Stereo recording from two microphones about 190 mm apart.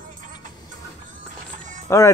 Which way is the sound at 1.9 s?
15° left (ahead or behind).